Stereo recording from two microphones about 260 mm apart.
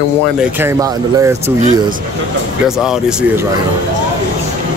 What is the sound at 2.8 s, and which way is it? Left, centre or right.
Speech, centre.